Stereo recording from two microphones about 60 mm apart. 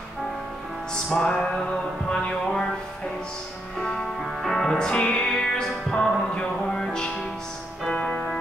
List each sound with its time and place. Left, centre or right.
1.1 s music: centre
4.2 s music: centre
7.9 s music: left